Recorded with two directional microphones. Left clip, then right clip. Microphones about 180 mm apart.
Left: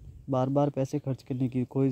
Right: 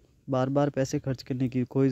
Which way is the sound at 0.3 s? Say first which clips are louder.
Right 1 dB; 10° right (ahead or behind).